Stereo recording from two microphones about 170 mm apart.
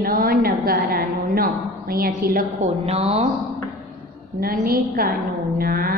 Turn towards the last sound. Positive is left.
turn(degrees=-60)  # may be behind; listen again after turning